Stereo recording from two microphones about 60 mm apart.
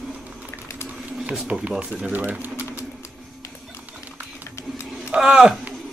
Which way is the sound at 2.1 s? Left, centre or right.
Right.